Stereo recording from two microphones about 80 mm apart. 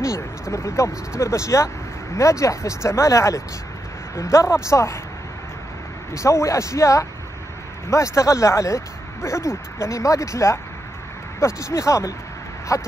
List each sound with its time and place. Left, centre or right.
0.0 s speech: left
6.1 s speech: left